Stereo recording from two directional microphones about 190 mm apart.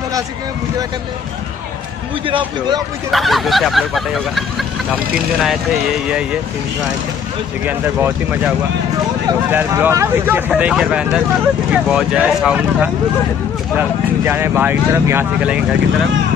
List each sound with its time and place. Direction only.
2.2 s speech: 25° right (ahead or behind)
3.1 s speech: centre (ahead or behind)
7.6 s speech: 10° right (ahead or behind)